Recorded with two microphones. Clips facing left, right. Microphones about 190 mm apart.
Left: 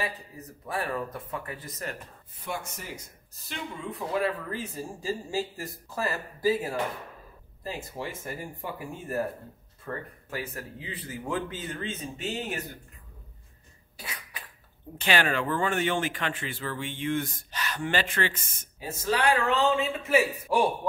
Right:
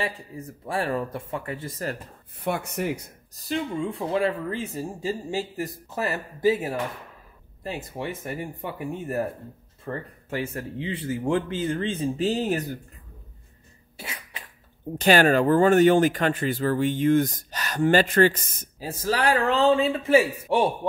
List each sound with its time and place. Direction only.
0.7 s speech: 30° right (ahead or behind)
2.3 s speech: 65° right (ahead or behind)
3.4 s speech: 30° right (ahead or behind)
13.9 s cough: 25° right (ahead or behind)
15.0 s speech: 40° right (ahead or behind); by 20.7 s 25° right (ahead or behind)